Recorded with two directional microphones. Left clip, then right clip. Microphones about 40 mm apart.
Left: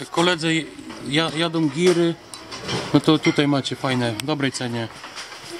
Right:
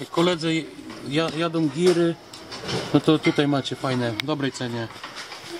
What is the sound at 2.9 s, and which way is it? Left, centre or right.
Speech, left.